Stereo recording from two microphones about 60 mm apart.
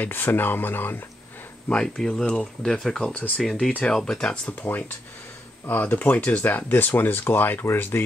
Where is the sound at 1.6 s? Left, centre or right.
Centre.